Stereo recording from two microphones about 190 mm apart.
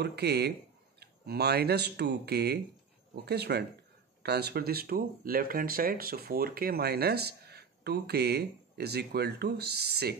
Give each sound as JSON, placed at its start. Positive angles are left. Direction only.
{"t": 0.0, "sound": "speech", "side_deg": -60}